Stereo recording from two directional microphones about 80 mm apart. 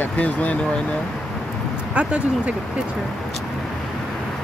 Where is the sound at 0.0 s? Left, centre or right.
Centre.